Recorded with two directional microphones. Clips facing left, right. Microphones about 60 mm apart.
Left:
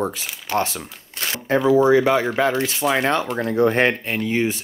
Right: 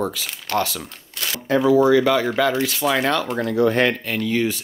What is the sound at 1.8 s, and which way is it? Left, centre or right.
Speech, left.